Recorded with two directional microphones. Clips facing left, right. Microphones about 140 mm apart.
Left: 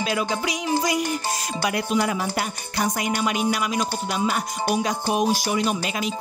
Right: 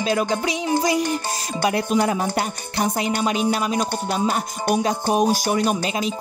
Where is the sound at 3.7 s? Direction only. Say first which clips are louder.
Right 2 dB; 40° right (ahead or behind).